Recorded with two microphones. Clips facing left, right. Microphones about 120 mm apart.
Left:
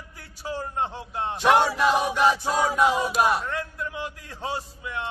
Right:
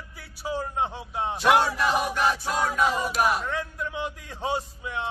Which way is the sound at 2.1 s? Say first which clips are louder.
Left 4 dB; 25° left (ahead or behind).